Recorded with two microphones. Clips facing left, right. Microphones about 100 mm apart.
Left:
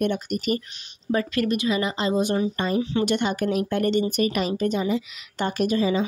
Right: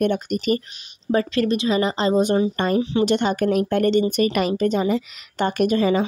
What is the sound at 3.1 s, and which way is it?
Speech, 40° right (ahead or behind).